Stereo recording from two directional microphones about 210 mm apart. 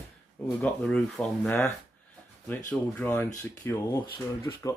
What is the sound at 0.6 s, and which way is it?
Speech, 5° left (ahead or behind).